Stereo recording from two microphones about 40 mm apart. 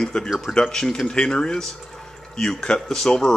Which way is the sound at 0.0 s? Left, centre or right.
Centre.